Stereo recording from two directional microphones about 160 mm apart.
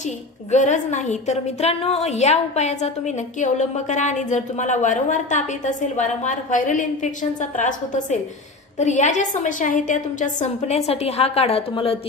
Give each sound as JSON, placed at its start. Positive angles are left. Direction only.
{"t": 0.5, "sound": "a woman's voice", "side_deg": 50}